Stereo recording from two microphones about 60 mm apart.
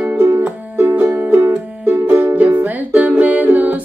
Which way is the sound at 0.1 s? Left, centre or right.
Right.